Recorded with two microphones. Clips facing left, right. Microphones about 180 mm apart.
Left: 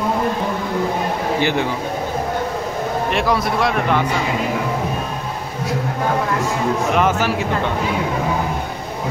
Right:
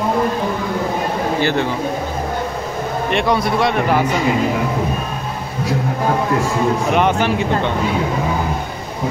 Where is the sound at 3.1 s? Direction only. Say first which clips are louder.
Right 4 dB; centre (ahead or behind).